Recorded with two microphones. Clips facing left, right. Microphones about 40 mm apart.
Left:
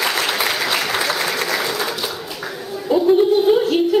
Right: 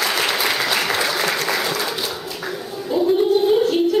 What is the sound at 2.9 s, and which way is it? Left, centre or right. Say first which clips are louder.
Music: left 3 dB; centre.